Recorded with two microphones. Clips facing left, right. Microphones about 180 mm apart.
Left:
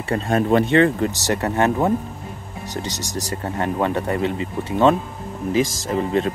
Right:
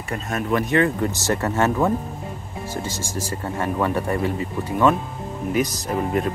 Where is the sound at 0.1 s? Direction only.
30° left (ahead or behind).